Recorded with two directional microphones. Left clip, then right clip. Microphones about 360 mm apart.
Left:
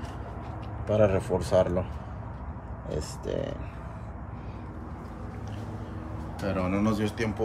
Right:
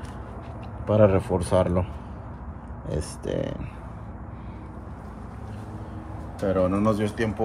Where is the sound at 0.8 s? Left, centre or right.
Centre.